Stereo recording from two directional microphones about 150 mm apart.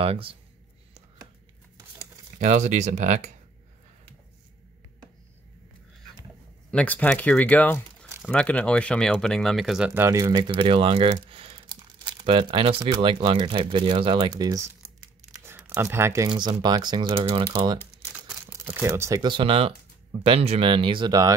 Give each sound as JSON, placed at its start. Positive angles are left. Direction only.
{"t": 0.0, "sound": "speech", "side_deg": -40}
{"t": 2.3, "sound": "speech", "side_deg": -50}
{"t": 6.7, "sound": "speech", "side_deg": 10}
{"t": 15.3, "sound": "a sound", "side_deg": -15}
{"t": 16.3, "sound": "speech", "side_deg": -30}
{"t": 17.5, "sound": "speech", "side_deg": -25}
{"t": 19.3, "sound": "speech", "side_deg": -35}